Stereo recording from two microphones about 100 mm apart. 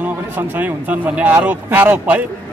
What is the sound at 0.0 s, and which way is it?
Speech, 20° right (ahead or behind).